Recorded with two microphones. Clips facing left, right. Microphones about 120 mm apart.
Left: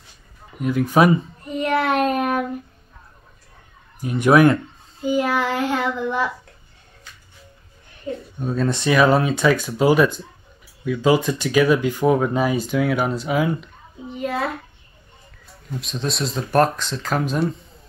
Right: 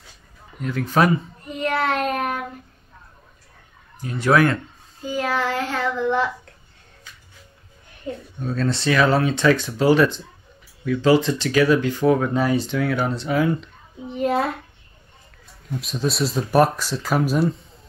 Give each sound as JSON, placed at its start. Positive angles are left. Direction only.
{"t": 0.6, "sound": "speech", "side_deg": 10}
{"t": 1.6, "sound": "child singing", "side_deg": 20}
{"t": 4.0, "sound": "speech", "side_deg": 15}
{"t": 8.4, "sound": "speech", "side_deg": 15}
{"t": 15.8, "sound": "speech", "side_deg": -5}